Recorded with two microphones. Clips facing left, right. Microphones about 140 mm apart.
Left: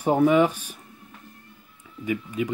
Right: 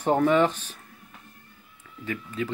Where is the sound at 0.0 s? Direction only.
10° left (ahead or behind).